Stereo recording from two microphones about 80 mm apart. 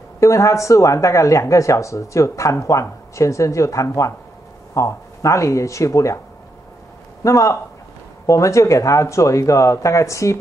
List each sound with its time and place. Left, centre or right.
0.2 s speech: left
7.2 s speech: left